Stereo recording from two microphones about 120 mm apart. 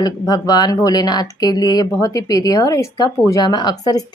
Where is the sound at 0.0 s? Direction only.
35° left (ahead or behind).